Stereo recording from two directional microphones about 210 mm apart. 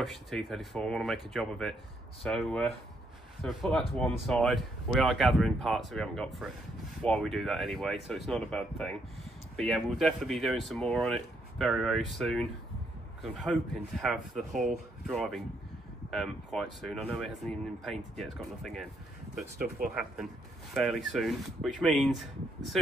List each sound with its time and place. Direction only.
0.0 s speech: centre (ahead or behind)
20.7 s speech: centre (ahead or behind)